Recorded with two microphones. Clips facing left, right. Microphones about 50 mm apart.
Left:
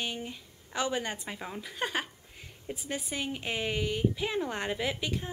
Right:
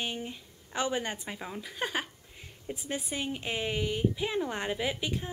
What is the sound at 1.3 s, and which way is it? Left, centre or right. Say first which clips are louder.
A woman's voice: even; centre.